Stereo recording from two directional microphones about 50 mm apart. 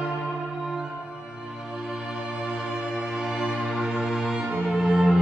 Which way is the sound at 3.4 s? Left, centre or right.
Centre.